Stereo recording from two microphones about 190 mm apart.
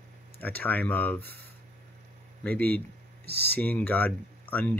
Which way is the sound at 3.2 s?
55° right (ahead or behind).